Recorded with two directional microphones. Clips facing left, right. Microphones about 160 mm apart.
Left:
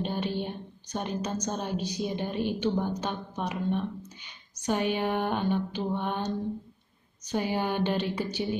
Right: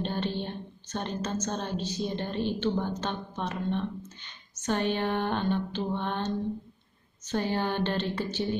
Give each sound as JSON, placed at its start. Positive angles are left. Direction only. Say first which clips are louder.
{"t": 0.0, "sound": "a woman's voice", "louder": "left 1 dB", "side_deg": 10}